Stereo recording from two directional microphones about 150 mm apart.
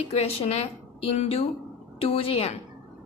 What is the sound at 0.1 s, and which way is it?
A woman's voice, 40° left (ahead or behind).